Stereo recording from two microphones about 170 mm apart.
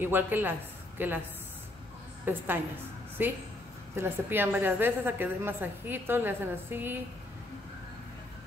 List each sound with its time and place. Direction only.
0.0 s a woman's voice: 10° right (ahead or behind)
2.2 s a woman's voice: 10° right (ahead or behind)